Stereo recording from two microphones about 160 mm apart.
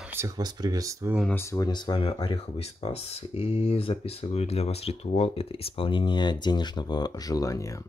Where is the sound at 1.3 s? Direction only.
15° left (ahead or behind).